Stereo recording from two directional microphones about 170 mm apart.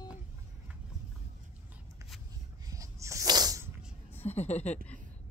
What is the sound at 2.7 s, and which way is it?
Sneeze, 20° right (ahead or behind).